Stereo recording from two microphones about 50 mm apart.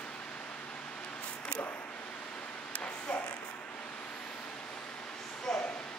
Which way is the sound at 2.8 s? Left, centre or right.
Left.